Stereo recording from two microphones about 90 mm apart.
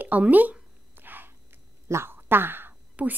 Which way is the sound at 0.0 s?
20° right (ahead or behind).